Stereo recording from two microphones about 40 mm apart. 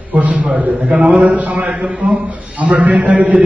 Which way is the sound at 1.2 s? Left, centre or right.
Right.